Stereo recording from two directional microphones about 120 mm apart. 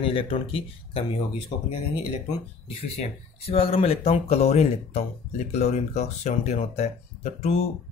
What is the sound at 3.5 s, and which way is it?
Speech, 50° left (ahead or behind).